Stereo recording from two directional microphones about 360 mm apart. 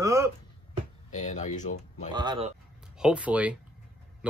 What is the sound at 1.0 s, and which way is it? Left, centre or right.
Speech, centre.